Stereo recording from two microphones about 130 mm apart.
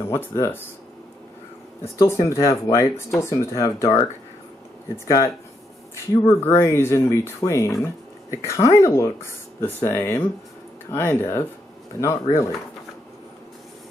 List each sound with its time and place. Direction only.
0.1 s speech: 20° left (ahead or behind)
2.0 s speech: 25° left (ahead or behind)